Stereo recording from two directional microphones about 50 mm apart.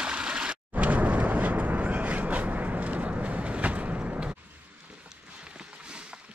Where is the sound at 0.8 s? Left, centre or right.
Right.